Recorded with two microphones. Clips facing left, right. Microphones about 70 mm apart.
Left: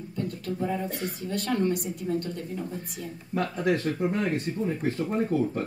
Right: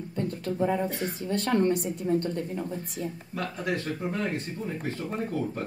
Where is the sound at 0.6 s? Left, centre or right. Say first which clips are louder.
Right 4 dB; right.